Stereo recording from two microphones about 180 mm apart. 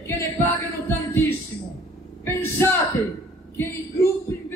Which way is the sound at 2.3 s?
15° left (ahead or behind).